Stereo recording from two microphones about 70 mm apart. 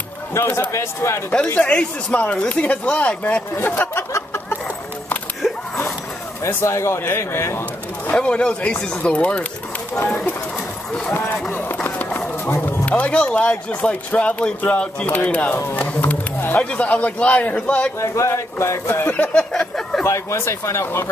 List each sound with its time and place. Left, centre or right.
0.5 s speech: left
1.5 s speech: centre
3.5 s speech: left
4.1 s chicken: left
6.4 s speech: left
8.1 s speech: centre
11.5 s run: left
12.9 s speech: centre
18.0 s speech: left
19.3 s a sound: centre
20.1 s speech: left